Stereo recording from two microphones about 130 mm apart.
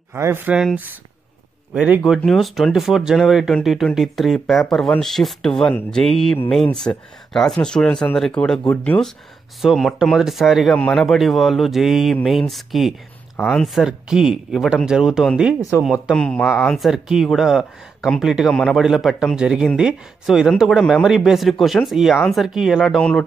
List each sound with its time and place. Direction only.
0.1 s speech: 20° right (ahead or behind)
1.7 s speech: 10° right (ahead or behind)
16.2 s speech: 5° left (ahead or behind)
22.9 s speech: 5° left (ahead or behind)